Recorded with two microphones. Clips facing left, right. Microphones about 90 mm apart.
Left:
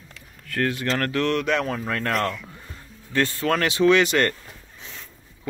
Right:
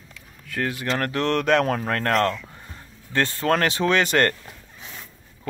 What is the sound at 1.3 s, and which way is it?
Speech, 45° right (ahead or behind).